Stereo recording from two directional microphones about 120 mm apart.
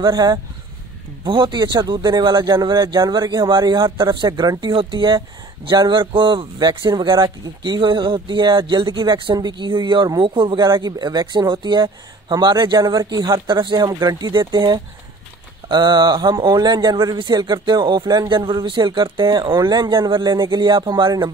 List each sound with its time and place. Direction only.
0.0 s speech: 35° right (ahead or behind)